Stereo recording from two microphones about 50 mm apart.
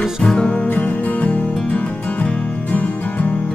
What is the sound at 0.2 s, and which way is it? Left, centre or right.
Music, centre.